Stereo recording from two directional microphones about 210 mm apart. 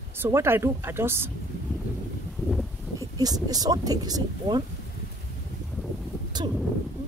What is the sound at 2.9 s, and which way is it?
Speech, 20° right (ahead or behind).